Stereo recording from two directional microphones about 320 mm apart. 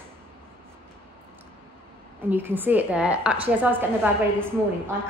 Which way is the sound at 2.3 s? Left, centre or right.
Centre.